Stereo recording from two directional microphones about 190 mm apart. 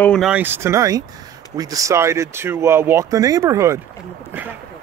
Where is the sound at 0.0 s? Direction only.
5° left (ahead or behind).